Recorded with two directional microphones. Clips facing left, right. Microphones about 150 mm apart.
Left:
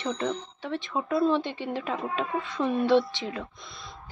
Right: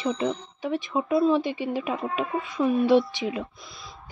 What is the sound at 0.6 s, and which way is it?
Speech, 15° right (ahead or behind).